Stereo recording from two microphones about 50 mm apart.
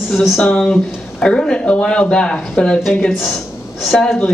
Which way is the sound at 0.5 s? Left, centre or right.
Left.